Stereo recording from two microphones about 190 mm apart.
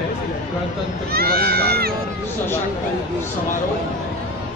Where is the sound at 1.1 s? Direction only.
55° right (ahead or behind).